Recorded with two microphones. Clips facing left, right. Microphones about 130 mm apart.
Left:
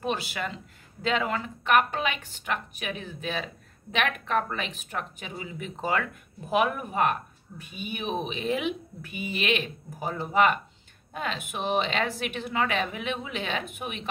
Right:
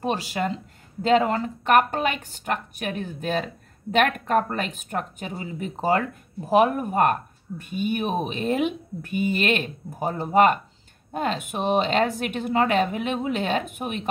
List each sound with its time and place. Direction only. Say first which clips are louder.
0.0 s speech: right 5 dB; 40° right (ahead or behind)